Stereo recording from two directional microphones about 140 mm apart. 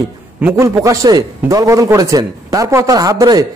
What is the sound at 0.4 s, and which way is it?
A man's voice, 15° right (ahead or behind).